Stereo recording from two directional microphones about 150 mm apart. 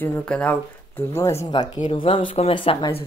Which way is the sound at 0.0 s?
5° left (ahead or behind).